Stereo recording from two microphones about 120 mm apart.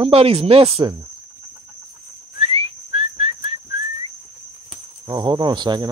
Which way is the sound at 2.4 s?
50° right (ahead or behind).